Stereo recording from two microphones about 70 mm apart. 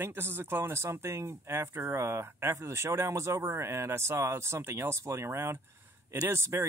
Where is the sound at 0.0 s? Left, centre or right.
Right.